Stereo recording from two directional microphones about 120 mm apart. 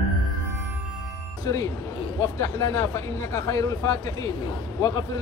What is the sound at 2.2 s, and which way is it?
A man's voice, 25° left (ahead or behind).